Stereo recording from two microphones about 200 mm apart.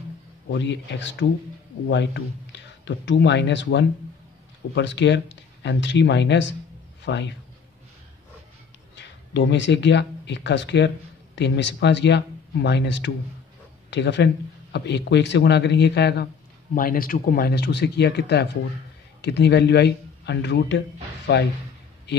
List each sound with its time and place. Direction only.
0.5 s a man's voice: 60° left (ahead or behind)
8.9 s a man's voice: 60° left (ahead or behind)
16.7 s a man's voice: 45° left (ahead or behind)